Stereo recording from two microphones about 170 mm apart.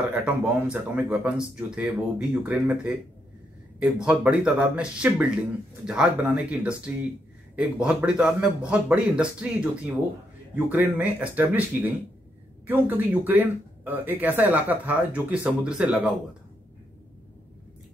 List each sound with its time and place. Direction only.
0.1 s speech: 10° right (ahead or behind)
4.0 s speech: 5° right (ahead or behind)